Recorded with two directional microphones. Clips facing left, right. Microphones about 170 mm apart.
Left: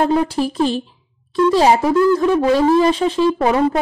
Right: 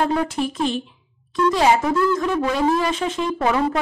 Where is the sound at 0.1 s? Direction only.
30° left (ahead or behind).